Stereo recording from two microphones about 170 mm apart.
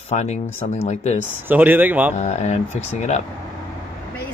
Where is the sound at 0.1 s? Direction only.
40° left (ahead or behind).